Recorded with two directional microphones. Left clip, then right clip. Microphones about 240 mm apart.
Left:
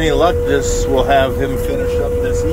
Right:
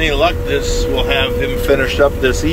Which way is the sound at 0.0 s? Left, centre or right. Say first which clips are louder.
Left 1 dB; left.